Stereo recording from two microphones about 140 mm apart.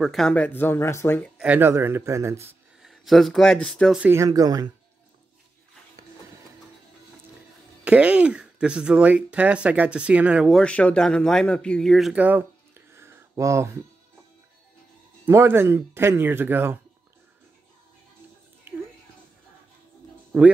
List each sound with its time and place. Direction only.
0.0 s speech: centre (ahead or behind)
1.4 s speech: 15° right (ahead or behind)
2.8 s speech: centre (ahead or behind)
4.0 s speech: 20° right (ahead or behind)
7.8 s speech: 10° right (ahead or behind)
10.6 s speech: 10° left (ahead or behind); by 13.7 s 20° right (ahead or behind)
15.2 s speech: 15° right (ahead or behind)